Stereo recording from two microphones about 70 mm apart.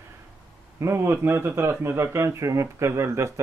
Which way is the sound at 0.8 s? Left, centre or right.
Right.